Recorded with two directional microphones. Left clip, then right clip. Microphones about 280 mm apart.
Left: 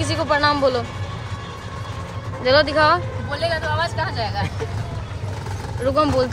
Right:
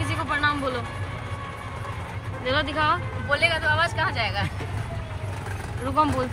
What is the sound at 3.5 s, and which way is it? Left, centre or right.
Speech, centre.